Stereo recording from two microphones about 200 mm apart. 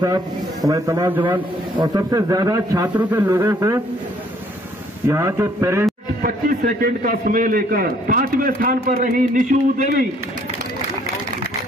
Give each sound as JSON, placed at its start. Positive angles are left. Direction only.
{"t": 0.7, "sound": "a man's voice", "side_deg": -15}
{"t": 5.0, "sound": "a man's voice", "side_deg": -15}
{"t": 6.2, "sound": "a man's voice", "side_deg": -45}